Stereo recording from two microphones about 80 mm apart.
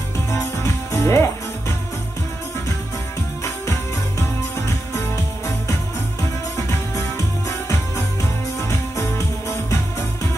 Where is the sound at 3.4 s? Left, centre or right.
Left.